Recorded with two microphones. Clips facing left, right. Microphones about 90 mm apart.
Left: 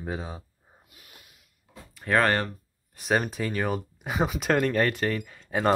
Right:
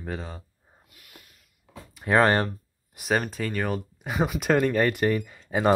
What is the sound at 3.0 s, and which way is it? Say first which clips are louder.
Speech: even; centre (ahead or behind).